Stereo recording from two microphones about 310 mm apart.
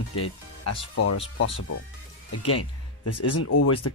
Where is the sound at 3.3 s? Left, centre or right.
Left.